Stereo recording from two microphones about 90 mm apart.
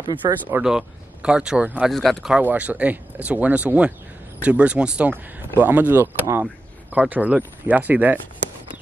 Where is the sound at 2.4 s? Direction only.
15° right (ahead or behind).